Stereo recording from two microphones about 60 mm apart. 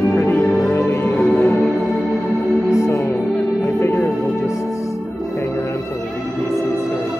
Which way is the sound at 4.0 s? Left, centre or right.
Left.